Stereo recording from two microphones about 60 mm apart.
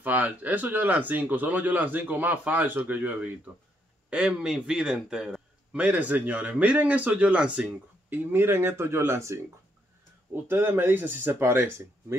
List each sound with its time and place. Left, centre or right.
0.0 s a man's voice: right
4.1 s a man's voice: centre
5.8 s a man's voice: right
8.1 s speech: right
10.3 s speech: right